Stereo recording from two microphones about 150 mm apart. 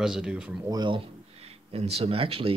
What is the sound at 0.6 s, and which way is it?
Speech, 30° right (ahead or behind).